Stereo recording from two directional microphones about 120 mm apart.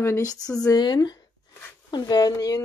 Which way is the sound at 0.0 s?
25° left (ahead or behind).